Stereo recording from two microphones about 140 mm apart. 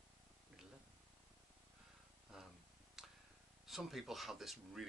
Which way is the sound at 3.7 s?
Centre (ahead or behind).